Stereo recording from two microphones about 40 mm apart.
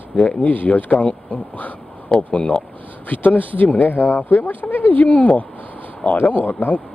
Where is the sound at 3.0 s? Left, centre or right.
Left.